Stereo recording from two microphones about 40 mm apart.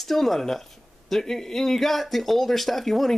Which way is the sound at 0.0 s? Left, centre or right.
Centre.